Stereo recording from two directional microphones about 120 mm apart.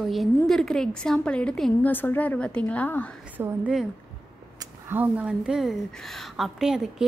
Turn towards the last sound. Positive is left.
turn(degrees=-5)  # may be behind; listen again after turning